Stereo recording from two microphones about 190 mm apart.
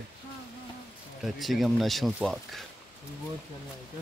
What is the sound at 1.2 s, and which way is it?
Speech, centre (ahead or behind).